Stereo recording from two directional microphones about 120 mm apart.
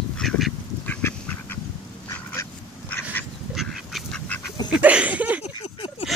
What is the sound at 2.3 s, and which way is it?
Duck, 20° left (ahead or behind).